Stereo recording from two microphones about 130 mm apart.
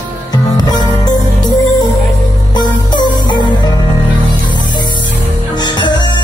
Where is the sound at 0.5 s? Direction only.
35° left (ahead or behind).